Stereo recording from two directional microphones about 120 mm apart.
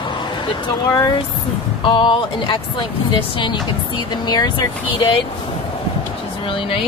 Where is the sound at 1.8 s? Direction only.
45° left (ahead or behind).